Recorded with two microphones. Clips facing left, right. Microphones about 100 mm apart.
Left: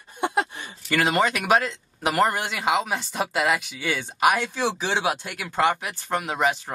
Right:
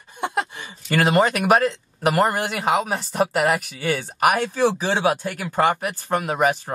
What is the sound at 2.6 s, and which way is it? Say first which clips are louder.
Speech: right 1 dB; 45° right (ahead or behind).